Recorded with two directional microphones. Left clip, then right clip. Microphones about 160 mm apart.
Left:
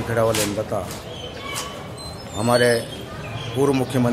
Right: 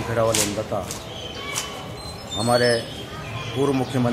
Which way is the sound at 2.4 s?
15° left (ahead or behind).